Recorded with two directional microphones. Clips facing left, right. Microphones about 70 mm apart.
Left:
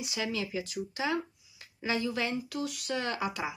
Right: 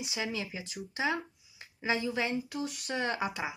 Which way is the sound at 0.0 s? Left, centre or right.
Right.